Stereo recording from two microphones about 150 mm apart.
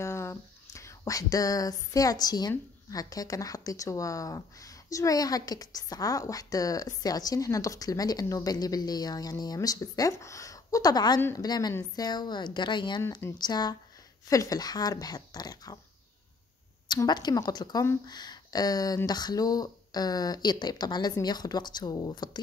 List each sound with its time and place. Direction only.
0.0 s whispering: 20° left (ahead or behind)
2.5 s speech: 25° left (ahead or behind)
11.1 s a woman's voice: 15° left (ahead or behind)
11.4 s speech: 25° left (ahead or behind)
16.8 s speech: 30° left (ahead or behind)